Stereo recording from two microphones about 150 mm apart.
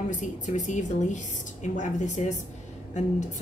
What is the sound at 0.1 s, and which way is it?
A woman's voice, 55° left (ahead or behind).